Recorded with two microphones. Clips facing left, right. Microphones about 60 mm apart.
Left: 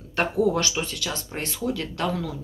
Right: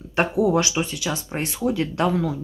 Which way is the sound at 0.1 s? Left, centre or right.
Centre.